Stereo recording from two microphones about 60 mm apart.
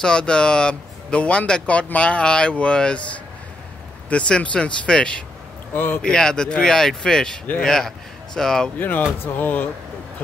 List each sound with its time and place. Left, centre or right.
0.0 s speech: centre
4.1 s speech: centre
5.7 s a man's voice: left
6.0 s speech: centre
8.7 s speech: left